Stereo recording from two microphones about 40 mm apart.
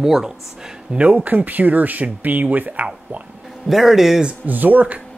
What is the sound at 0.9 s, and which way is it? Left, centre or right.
Speech, right.